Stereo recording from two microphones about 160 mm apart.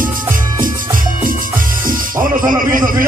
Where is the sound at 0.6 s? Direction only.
60° right (ahead or behind).